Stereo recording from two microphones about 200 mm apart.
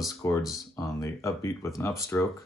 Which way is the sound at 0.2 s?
15° left (ahead or behind).